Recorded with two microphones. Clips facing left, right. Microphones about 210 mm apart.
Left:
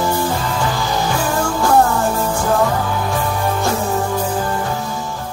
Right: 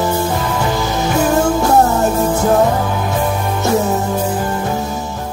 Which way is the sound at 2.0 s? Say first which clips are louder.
Right 4 dB; 20° right (ahead or behind).